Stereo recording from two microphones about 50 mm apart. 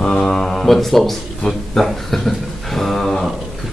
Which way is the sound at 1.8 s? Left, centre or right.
Centre.